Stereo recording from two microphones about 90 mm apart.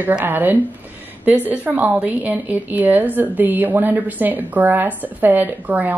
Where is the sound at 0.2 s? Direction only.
20° right (ahead or behind).